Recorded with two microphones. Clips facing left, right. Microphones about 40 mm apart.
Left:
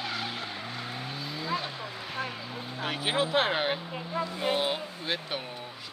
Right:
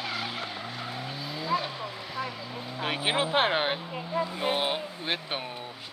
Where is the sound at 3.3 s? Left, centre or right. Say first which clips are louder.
Right 1 dB; right.